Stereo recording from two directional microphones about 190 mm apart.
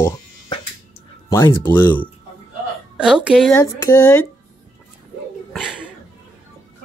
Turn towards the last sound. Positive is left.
turn(degrees=-5)  # may be behind; listen again after turning